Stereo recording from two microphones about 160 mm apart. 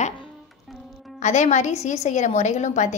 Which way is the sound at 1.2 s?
45° left (ahead or behind).